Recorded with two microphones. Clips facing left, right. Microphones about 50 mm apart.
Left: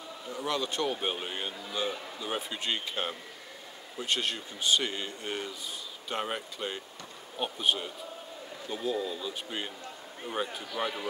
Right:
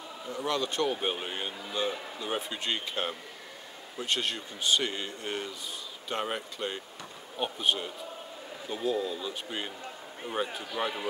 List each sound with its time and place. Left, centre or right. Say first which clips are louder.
0.3 s a man's voice: right 1 dB; centre